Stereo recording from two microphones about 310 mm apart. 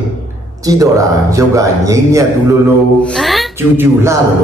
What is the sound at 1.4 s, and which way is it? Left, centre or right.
Speech, centre.